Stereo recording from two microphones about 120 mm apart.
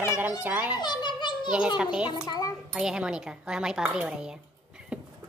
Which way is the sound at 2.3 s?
30° left (ahead or behind).